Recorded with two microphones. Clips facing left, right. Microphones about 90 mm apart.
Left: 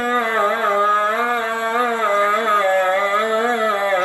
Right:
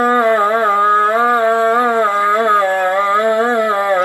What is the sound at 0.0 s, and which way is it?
Music, 20° right (ahead or behind).